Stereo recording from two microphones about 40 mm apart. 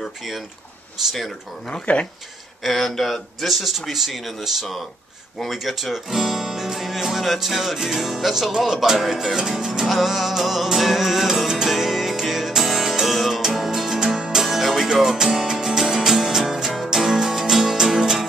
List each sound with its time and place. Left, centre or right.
1.0 s music: centre
1.9 s speech: left
2.6 s a man's voice: centre
5.6 s music: centre